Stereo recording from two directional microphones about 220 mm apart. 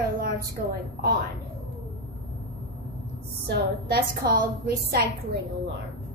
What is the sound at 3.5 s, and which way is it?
Speech, 45° right (ahead or behind).